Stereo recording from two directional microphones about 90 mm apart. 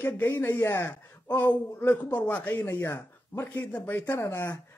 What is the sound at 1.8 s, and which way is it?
Speech, 20° left (ahead or behind).